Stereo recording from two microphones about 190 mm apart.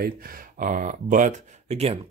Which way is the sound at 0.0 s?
50° right (ahead or behind).